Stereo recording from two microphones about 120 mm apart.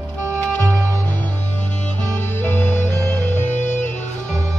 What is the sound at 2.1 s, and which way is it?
Music, 15° left (ahead or behind).